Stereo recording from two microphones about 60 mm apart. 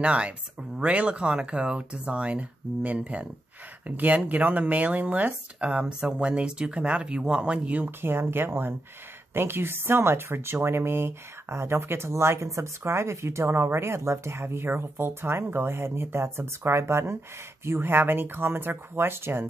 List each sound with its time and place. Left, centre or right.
0.0 s speech: centre
8.0 s speech: right